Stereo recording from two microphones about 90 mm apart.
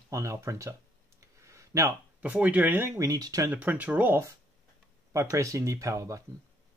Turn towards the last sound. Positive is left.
turn(degrees=-40)  # may be behind; listen again after turning